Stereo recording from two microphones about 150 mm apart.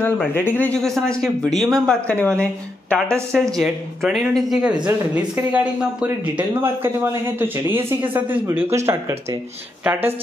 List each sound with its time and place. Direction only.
0.0 s speech: 15° left (ahead or behind)
3.1 s speech: 15° right (ahead or behind)
3.3 s speech: 5° left (ahead or behind); by 9.4 s 15° right (ahead or behind)